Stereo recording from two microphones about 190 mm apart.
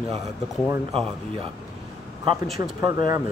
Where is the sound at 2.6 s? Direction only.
15° right (ahead or behind).